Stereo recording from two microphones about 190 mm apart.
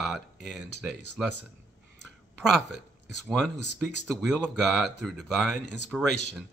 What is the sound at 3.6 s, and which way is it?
Speech, 65° left (ahead or behind).